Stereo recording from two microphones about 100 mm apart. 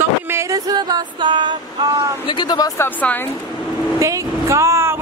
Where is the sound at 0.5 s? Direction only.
40° right (ahead or behind).